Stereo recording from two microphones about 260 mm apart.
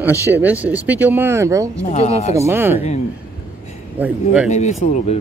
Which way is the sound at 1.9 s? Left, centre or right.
Left.